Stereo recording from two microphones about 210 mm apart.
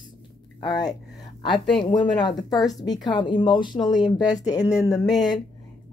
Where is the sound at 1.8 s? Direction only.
20° left (ahead or behind).